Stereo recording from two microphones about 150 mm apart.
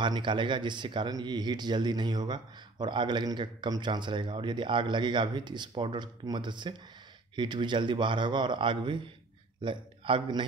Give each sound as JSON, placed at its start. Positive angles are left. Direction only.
{"t": 0.0, "sound": "a man's voice", "side_deg": -30}